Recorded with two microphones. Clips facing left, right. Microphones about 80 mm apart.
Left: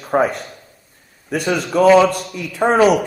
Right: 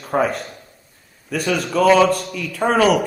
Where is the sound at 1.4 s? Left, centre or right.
Left.